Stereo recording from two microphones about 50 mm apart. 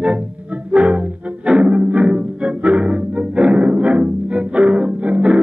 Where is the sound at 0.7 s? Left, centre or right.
Right.